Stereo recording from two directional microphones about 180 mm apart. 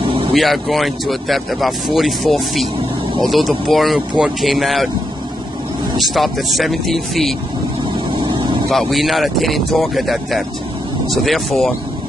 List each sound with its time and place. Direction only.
0.0 s vehicle: 30° right (ahead or behind)
0.3 s speech: centre (ahead or behind)
5.9 s speech: centre (ahead or behind)
8.1 s vehicle: 25° right (ahead or behind)
8.6 s speech: centre (ahead or behind)